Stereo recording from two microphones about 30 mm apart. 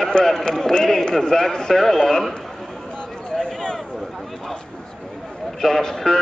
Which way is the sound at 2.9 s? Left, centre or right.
Left.